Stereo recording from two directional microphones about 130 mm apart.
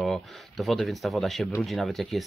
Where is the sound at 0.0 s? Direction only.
Centre (ahead or behind).